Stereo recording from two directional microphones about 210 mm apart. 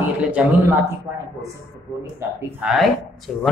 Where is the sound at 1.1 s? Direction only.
15° right (ahead or behind).